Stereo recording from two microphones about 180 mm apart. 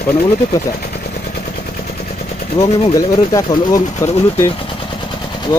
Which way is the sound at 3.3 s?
15° left (ahead or behind).